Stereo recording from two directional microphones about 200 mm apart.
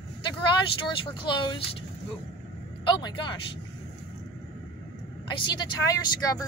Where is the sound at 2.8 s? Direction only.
20° left (ahead or behind).